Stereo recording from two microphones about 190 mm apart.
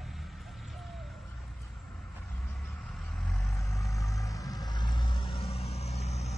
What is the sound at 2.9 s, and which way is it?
Vehicle, centre (ahead or behind).